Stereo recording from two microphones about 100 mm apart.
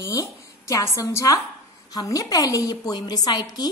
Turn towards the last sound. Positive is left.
turn(degrees=45)  # may be behind; listen again after turning